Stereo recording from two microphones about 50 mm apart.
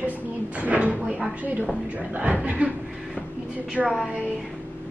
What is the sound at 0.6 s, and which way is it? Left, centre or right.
Speech, right.